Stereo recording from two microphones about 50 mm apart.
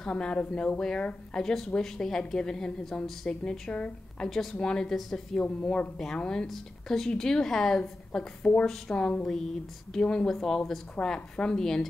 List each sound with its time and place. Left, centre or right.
0.1 s a woman's voice: centre
1.3 s a woman's voice: centre
4.3 s a woman's voice: centre
5.4 s a woman's voice: left